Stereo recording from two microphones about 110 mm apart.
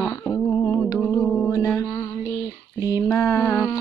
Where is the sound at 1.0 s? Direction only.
10° left (ahead or behind).